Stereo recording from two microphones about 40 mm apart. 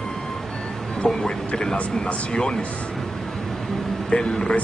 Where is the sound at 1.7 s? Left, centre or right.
Left.